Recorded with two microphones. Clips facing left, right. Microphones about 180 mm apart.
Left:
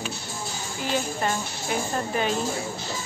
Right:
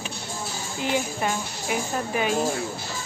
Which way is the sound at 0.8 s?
15° right (ahead or behind).